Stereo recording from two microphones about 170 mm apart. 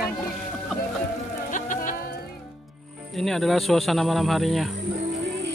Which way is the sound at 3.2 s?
Centre (ahead or behind).